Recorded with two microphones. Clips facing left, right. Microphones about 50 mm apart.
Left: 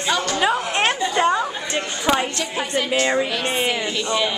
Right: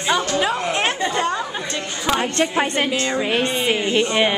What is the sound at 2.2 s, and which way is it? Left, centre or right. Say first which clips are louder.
Speech: right 4 dB; right.